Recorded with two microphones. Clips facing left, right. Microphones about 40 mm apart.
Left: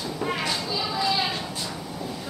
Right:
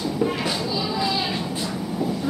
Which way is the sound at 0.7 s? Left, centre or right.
Centre.